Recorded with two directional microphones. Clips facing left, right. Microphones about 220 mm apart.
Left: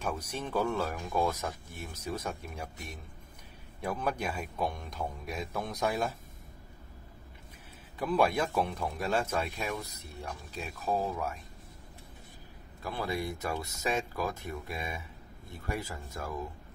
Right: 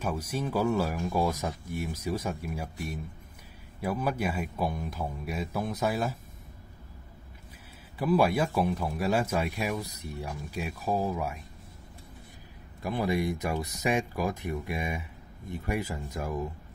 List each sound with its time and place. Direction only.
0.0 s speech: 5° right (ahead or behind)
8.0 s speech: 5° right (ahead or behind)
12.8 s speech: 15° right (ahead or behind)